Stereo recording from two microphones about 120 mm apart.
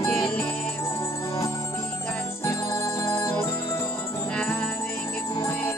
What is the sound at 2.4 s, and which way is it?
Music, 25° left (ahead or behind).